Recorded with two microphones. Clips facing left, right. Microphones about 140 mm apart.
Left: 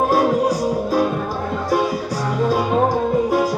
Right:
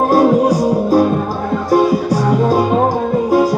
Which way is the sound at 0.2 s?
15° right (ahead or behind).